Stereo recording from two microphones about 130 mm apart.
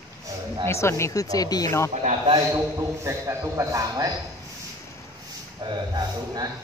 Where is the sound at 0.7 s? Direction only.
20° left (ahead or behind).